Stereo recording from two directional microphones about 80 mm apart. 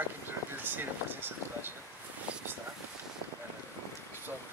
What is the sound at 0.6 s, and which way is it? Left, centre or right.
Speech, right.